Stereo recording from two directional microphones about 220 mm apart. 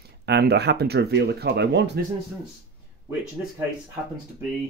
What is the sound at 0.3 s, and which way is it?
Speech, 50° right (ahead or behind).